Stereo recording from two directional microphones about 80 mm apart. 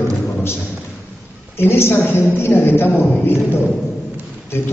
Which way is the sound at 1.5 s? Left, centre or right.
Left.